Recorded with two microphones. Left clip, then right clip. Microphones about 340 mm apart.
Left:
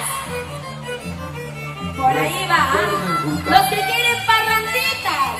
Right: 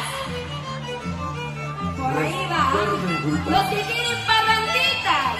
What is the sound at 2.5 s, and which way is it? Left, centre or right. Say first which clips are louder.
Music: left 4 dB; left.